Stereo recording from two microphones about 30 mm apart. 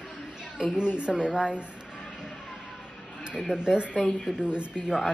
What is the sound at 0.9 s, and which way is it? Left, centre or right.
Speech, right.